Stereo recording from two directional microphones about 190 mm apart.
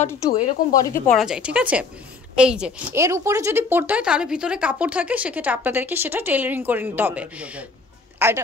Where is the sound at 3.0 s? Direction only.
15° right (ahead or behind).